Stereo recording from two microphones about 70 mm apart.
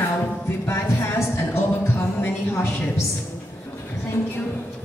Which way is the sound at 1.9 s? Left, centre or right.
Left.